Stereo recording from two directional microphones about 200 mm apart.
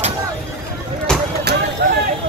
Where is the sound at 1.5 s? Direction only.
55° right (ahead or behind).